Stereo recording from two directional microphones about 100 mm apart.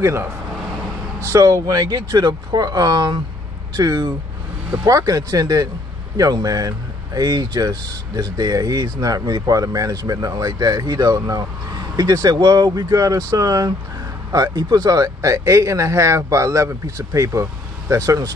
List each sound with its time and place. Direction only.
0.0 s speech: 25° right (ahead or behind)
1.3 s speech: 30° right (ahead or behind)